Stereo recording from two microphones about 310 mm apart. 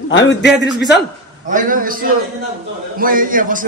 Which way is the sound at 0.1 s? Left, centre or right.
Left.